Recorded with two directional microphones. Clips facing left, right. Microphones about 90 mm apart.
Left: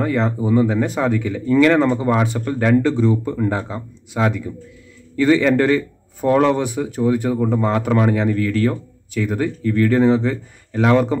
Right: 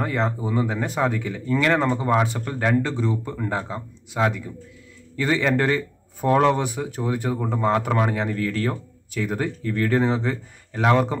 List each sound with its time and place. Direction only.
0.0 s speech: 30° right (ahead or behind)